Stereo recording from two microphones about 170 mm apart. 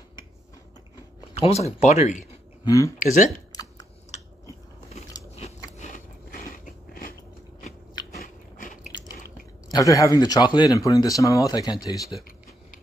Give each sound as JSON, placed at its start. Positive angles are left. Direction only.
{"t": 1.4, "sound": "speech", "side_deg": 40}
{"t": 2.6, "sound": "speech", "side_deg": 20}
{"t": 3.0, "sound": "speech", "side_deg": 50}
{"t": 5.8, "sound": "biting", "side_deg": 55}
{"t": 8.1, "sound": "biting", "side_deg": 55}
{"t": 9.7, "sound": "speech", "side_deg": 20}